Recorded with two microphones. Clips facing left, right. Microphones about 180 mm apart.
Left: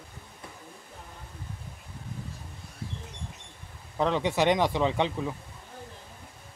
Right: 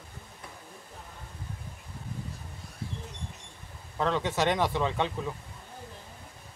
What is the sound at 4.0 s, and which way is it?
Speech, 15° left (ahead or behind).